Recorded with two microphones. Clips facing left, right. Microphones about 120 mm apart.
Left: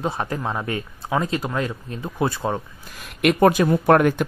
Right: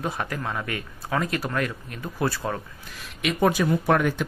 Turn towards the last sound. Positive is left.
turn(degrees=55)  # may be behind; listen again after turning